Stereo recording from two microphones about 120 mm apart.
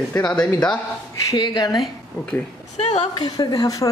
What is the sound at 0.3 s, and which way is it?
A woman's voice, 30° left (ahead or behind).